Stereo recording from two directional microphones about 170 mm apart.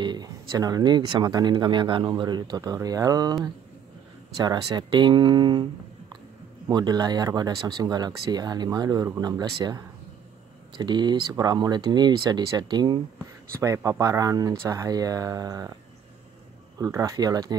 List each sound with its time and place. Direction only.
0.0 s speech: 25° right (ahead or behind)
4.4 s speech: 25° right (ahead or behind)
16.7 s speech: 20° right (ahead or behind)